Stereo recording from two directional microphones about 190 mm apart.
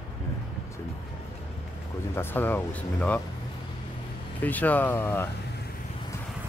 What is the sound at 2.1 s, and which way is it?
Speech, 10° left (ahead or behind).